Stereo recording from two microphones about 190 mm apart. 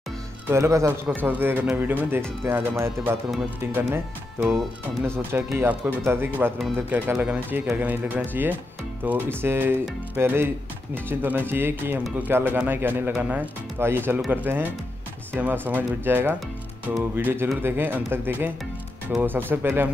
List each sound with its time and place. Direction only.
0.5 s speech: 15° right (ahead or behind)
5.0 s speech: 15° right (ahead or behind)